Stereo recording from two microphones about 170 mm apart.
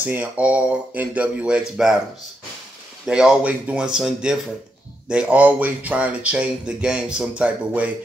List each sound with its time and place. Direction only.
0.0 s speech: 10° right (ahead or behind)
3.1 s speech: 5° right (ahead or behind)